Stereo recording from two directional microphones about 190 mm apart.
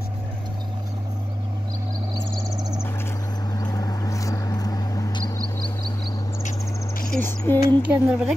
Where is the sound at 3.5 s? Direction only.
20° left (ahead or behind).